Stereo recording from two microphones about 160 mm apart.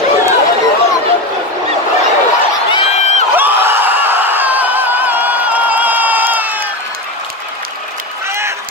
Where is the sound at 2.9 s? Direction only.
45° left (ahead or behind).